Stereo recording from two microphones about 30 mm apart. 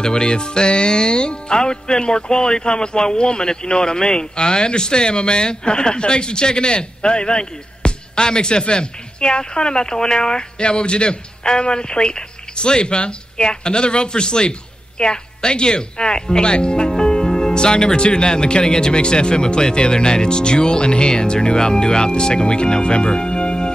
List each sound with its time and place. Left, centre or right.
0.0 s speech: left